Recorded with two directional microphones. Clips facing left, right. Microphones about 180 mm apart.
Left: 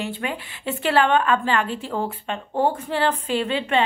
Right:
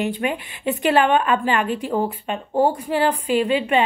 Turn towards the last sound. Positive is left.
turn(degrees=-15)  # may be behind; listen again after turning